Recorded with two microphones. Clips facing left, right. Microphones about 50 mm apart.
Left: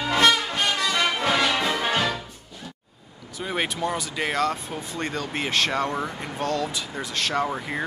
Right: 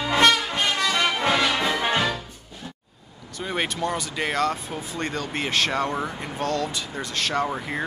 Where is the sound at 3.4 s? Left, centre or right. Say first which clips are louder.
Even; centre.